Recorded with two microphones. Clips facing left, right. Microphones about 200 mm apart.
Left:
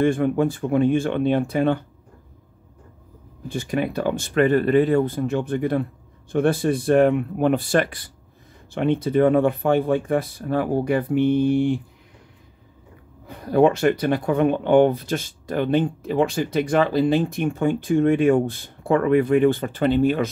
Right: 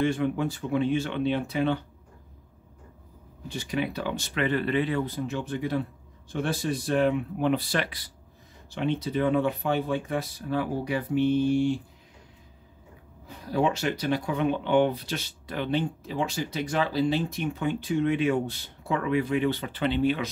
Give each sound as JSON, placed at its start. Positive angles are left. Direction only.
{"t": 0.0, "sound": "speech", "side_deg": 50}
{"t": 3.4, "sound": "speech", "side_deg": 50}
{"t": 13.3, "sound": "speech", "side_deg": 55}